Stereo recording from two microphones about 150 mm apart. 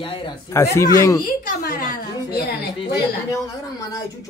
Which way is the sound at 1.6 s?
85° left.